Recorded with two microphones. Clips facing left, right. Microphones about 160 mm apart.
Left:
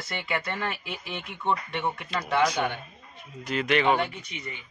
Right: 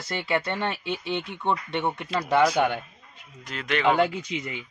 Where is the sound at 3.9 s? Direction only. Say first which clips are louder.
Right 6 dB; 90° right.